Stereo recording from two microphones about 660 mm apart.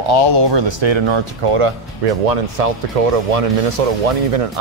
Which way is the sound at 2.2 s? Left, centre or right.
Right.